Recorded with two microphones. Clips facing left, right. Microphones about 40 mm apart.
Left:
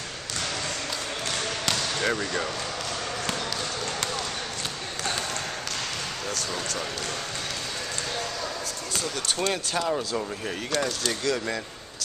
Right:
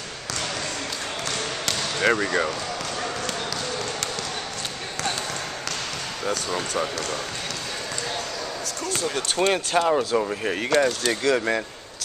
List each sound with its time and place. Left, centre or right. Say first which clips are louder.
2.0 s speech: right 5 dB; right
6.5 s speech: right 5 dB; right
9.1 s speech: right 5 dB; right